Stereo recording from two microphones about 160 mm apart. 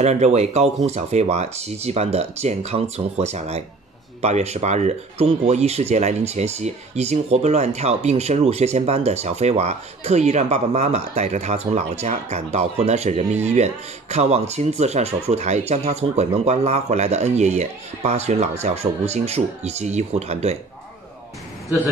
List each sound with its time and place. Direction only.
0.0 s speech: 45° right (ahead or behind)